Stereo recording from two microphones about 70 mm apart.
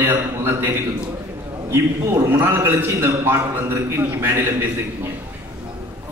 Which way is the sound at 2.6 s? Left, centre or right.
Right.